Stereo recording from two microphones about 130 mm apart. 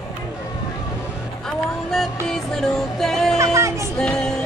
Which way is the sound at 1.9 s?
5° left (ahead or behind).